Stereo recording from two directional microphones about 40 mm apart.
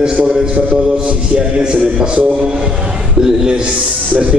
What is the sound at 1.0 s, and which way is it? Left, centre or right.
Music, right.